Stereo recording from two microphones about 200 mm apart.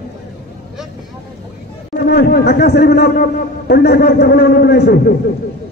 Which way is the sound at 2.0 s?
55° left (ahead or behind).